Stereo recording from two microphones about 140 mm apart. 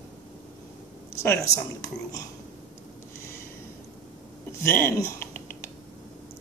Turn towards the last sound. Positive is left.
turn(degrees=15)  # may be behind; listen again after turning